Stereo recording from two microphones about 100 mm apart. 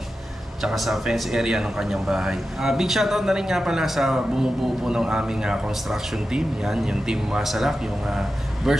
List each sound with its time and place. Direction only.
0.6 s speech: centre (ahead or behind)